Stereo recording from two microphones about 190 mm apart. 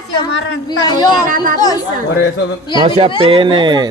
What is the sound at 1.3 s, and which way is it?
Speech, 45° right (ahead or behind).